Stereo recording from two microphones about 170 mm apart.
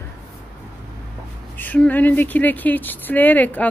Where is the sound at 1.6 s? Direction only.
10° left (ahead or behind).